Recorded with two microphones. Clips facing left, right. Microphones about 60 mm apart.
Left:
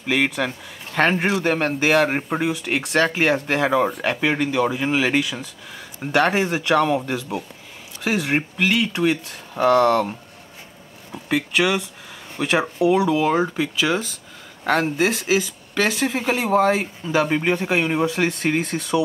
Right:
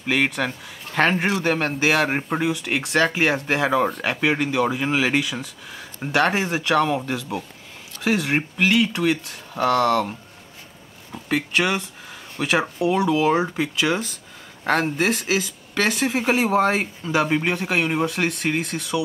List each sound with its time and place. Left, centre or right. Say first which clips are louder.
0.1 s speech: left 1 dB; centre
9.5 s speech: left 3 dB; centre
11.5 s speech: left 3 dB; centre
18.6 s speech: left 3 dB; left